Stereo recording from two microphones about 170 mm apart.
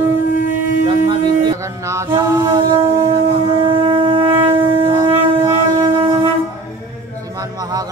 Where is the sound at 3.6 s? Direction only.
30° right (ahead or behind).